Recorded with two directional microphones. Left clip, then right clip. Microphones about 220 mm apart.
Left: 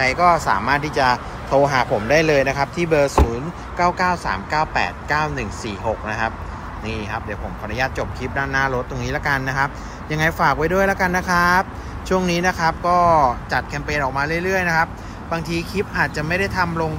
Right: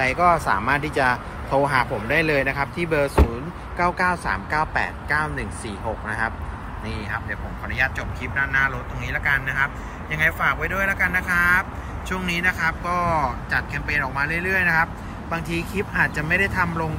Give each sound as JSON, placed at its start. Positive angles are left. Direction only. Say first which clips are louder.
{"t": 0.0, "sound": "a man's voice", "louder": "left 3 dB", "side_deg": 5}